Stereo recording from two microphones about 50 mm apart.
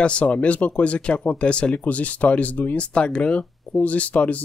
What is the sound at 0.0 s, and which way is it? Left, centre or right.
Speech, left.